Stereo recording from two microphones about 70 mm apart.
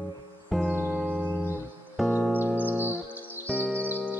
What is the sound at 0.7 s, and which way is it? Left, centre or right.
Music, right.